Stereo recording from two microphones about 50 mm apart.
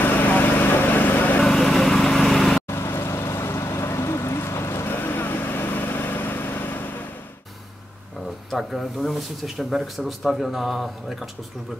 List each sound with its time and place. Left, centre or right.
0.0 s vehicle: left
1.4 s lawn mower: centre
2.7 s vehicle: left
4.8 s vehicle: left
8.5 s speech: centre